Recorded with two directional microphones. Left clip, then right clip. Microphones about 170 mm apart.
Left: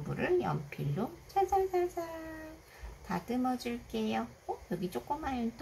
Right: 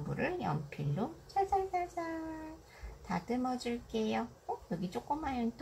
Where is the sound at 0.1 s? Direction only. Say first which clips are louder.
Left 4 dB; 20° left (ahead or behind).